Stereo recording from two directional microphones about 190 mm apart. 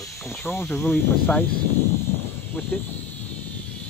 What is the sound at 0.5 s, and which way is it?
Speech, 5° left (ahead or behind).